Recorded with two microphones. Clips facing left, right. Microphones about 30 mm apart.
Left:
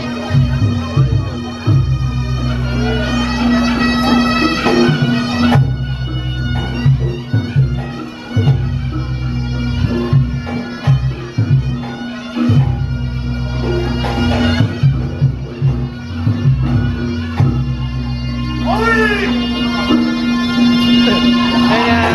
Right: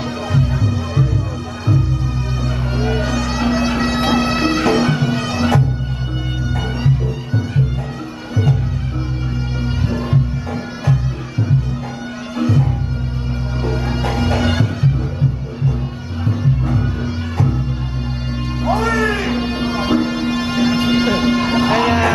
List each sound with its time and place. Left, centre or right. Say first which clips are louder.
0.3 s music: left 2 dB; left
2.9 s music: left 2 dB; left
3.2 s bagpipes: left 6 dB; left
4.2 s music: left 3 dB; left
9.8 s music: left 3 dB; left
12.4 s music: left 3 dB; left
13.7 s music: left 3 dB; left
18.6 s music: left 4 dB; left